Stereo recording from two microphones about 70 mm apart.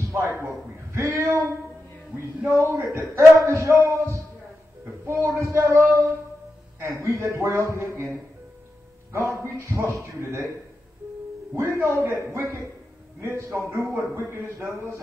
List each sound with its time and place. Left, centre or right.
0.1 s a sound: right
2.5 s speech: right
5.0 s speech: right
11.5 s a man's voice: right